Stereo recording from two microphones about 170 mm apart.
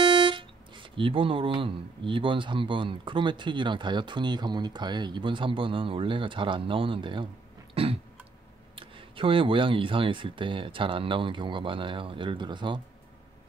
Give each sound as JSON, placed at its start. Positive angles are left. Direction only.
{"t": 0.0, "sound": "speech", "side_deg": -30}
{"t": 7.7, "sound": "a sound", "side_deg": -35}
{"t": 8.7, "sound": "speech", "side_deg": -30}